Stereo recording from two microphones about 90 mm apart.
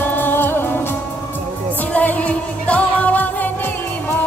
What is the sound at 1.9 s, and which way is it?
Music, 15° left (ahead or behind).